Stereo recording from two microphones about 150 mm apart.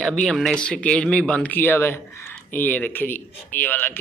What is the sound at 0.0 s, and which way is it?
Speech, 5° left (ahead or behind).